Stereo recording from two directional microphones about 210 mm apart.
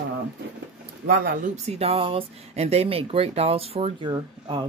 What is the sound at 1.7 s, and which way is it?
Speech, 30° right (ahead or behind).